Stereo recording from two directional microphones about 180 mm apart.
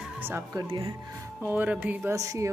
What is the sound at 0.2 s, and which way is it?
Speech, 10° right (ahead or behind).